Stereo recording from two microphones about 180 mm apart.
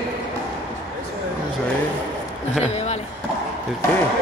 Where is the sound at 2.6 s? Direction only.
35° left (ahead or behind).